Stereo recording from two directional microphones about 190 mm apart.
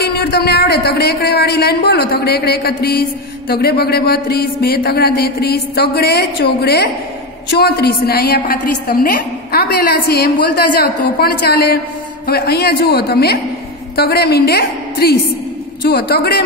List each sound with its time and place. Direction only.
0.0 s a woman's voice: 55° left (ahead or behind)